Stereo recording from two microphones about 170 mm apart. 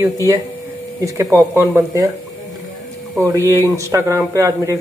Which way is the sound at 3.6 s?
15° right (ahead or behind).